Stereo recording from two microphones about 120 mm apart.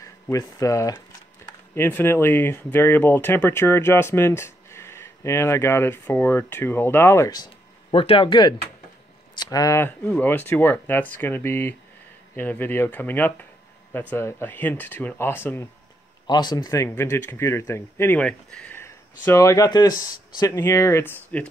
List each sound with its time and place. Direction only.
0.0 s speech: 25° left (ahead or behind)
1.8 s speech: 15° left (ahead or behind)
7.2 s speech: 35° left (ahead or behind)
7.9 s speech: 50° left (ahead or behind); by 9.8 s 30° left (ahead or behind)
9.8 s speech: 15° left (ahead or behind)
16.3 s speech: 35° left (ahead or behind)
16.9 s speech: 20° left (ahead or behind)
18.8 s speech: 20° left (ahead or behind)